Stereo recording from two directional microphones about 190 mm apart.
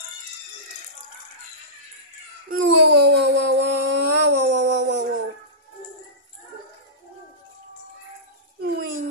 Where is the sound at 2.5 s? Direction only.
60° right (ahead or behind).